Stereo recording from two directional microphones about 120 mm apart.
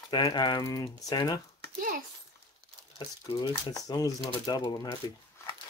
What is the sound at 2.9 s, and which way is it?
Speech, 35° left (ahead or behind).